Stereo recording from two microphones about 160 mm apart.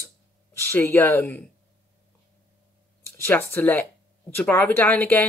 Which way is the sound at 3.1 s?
15° left (ahead or behind).